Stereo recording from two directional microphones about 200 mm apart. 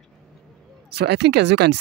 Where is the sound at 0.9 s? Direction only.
55° right (ahead or behind).